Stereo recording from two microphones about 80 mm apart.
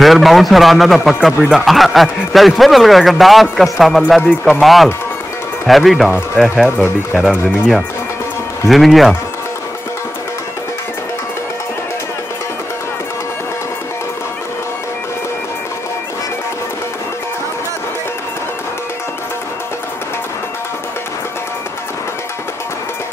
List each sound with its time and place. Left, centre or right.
0.0 s a man's voice: centre
6.4 s speech: centre
7.2 s a man's voice: centre